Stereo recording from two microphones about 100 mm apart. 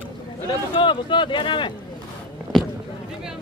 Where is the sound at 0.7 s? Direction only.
55° left (ahead or behind).